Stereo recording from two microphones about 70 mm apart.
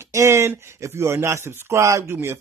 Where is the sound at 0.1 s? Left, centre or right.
Right.